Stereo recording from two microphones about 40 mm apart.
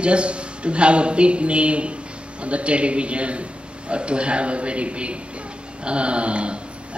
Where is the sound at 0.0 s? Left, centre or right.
Right.